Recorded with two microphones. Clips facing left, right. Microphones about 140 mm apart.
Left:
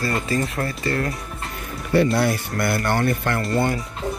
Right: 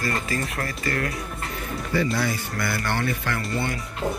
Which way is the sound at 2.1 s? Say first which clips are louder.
Left 5 dB; 60° left (ahead or behind).